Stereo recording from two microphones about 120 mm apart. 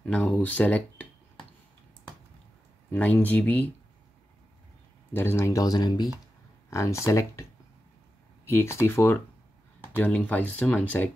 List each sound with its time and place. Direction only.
0.0 s speech: 10° left (ahead or behind)
2.9 s speech: 15° left (ahead or behind)
5.1 s speech: 20° left (ahead or behind)
8.5 s speech: 20° left (ahead or behind)